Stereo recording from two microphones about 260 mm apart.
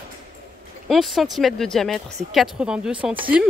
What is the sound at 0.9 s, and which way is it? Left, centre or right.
A woman's voice, centre.